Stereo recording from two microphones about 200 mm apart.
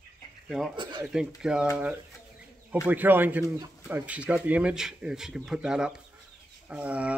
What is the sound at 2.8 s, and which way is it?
A man's voice, 10° right (ahead or behind).